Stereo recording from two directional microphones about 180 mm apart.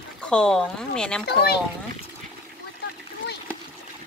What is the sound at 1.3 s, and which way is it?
Speech, 65° left (ahead or behind).